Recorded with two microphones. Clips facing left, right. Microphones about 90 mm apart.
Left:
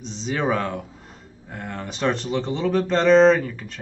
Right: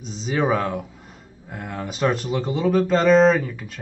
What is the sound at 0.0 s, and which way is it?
Speech, 5° right (ahead or behind).